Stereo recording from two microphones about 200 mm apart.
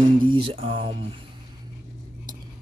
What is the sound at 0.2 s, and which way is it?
Speech, 25° right (ahead or behind).